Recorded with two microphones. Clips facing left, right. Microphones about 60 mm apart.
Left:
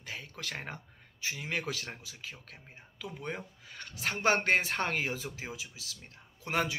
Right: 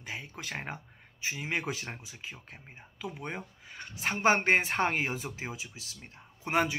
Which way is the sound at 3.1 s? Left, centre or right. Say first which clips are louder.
Even; centre.